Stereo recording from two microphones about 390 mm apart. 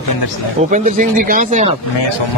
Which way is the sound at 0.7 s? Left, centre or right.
Centre.